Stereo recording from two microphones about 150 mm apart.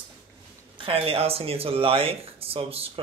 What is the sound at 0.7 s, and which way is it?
Speech, 35° right (ahead or behind).